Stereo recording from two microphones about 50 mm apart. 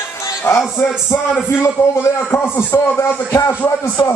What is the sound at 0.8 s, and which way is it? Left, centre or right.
Speech, left.